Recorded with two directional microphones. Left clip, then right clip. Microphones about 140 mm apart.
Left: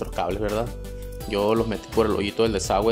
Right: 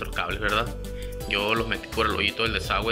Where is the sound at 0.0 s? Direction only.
50° left (ahead or behind).